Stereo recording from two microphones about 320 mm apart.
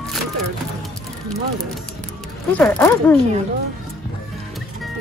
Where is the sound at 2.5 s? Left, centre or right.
Centre.